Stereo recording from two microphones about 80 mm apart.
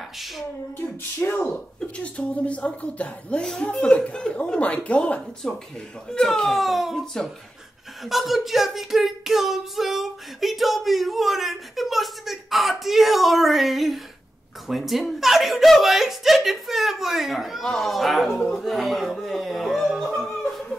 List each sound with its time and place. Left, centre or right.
0.2 s speech: centre
1.2 s speech: left; by 20.6 s centre